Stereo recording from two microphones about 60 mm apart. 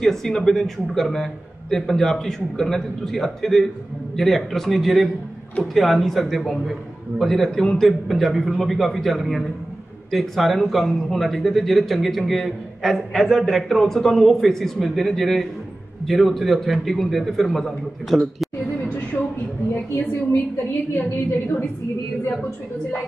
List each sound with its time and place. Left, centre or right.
0.0 s speech: centre
19.7 s a woman's voice: left